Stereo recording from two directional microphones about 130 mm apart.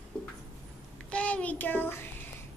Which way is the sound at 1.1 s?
10° left (ahead or behind).